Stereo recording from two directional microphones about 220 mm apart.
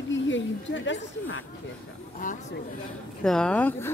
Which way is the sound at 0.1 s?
55° left (ahead or behind).